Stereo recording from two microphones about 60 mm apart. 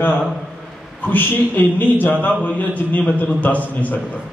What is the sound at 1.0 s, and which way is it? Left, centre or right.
A man's voice, left.